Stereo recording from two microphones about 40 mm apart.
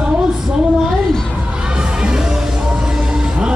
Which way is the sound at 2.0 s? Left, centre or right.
Centre.